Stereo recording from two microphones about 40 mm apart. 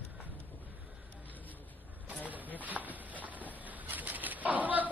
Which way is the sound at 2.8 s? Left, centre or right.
Left.